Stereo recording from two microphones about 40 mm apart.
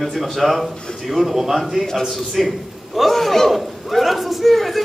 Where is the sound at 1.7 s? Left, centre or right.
Centre.